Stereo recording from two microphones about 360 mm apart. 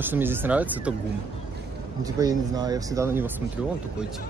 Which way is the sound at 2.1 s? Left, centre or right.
Centre.